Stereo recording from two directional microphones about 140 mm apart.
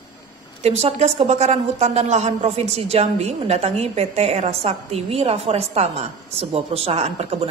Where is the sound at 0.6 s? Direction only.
50° right (ahead or behind).